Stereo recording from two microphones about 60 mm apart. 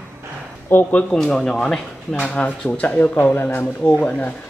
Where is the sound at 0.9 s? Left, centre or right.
Left.